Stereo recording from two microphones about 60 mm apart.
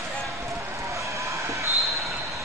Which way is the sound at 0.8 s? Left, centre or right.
Right.